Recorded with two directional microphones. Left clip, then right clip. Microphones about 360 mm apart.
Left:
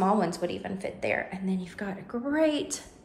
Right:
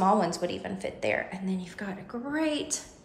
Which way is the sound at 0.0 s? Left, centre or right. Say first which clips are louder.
Right 1 dB; centre.